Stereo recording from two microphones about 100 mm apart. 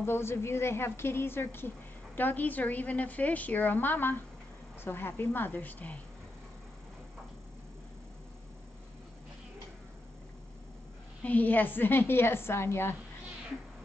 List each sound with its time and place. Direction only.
0.0 s a woman's voice: 25° left (ahead or behind)
11.2 s a woman's voice: 15° left (ahead or behind)